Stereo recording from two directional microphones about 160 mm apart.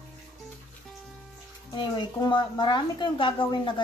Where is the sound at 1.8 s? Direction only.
30° left (ahead or behind).